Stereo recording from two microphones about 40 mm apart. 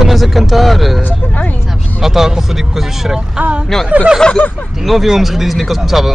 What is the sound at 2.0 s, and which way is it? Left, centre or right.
Speech, centre.